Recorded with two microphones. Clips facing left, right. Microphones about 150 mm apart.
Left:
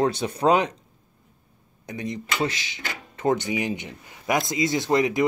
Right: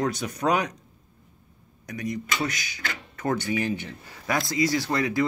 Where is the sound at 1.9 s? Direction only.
25° left (ahead or behind).